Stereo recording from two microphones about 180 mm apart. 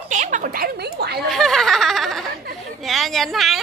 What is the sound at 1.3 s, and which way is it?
Giggle, centre (ahead or behind).